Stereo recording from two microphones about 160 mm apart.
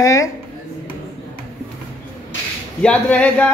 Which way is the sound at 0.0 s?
20° left (ahead or behind).